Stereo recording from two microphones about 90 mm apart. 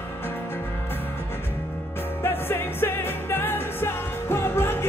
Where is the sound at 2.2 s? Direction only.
25° left (ahead or behind).